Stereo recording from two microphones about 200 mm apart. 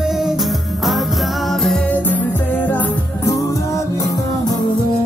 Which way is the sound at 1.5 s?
Centre (ahead or behind).